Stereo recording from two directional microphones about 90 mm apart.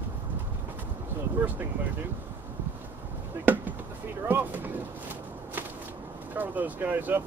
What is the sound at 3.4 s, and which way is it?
Basketball bounce, 20° right (ahead or behind).